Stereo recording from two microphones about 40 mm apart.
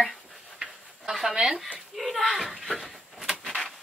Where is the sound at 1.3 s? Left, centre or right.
Right.